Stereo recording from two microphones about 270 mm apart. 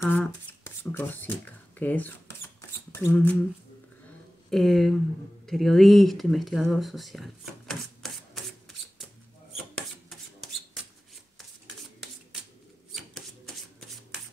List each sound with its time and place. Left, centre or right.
0.0 s speech: centre
2.9 s a sound: centre
4.5 s speech: centre